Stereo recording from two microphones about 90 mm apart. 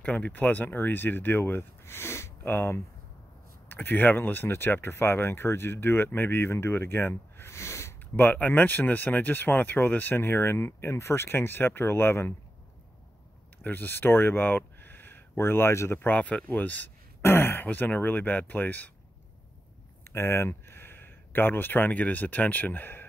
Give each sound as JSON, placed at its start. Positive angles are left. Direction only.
{"t": 0.0, "sound": "speech", "side_deg": 15}
{"t": 13.6, "sound": "speech", "side_deg": 20}
{"t": 20.1, "sound": "speech", "side_deg": 30}